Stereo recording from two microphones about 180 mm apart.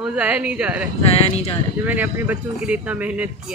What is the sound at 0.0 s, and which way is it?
Speech, 10° right (ahead or behind).